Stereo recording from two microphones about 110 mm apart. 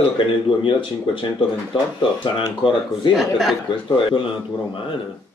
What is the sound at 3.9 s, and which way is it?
Speech, 50° left (ahead or behind).